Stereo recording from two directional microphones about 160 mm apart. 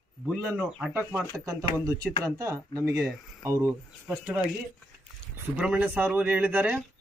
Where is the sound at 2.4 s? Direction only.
20° right (ahead or behind).